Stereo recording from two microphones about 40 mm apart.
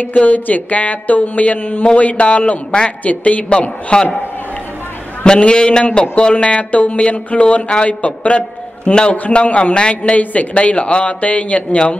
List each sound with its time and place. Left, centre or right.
0.0 s speech: left
5.2 s a man's voice: left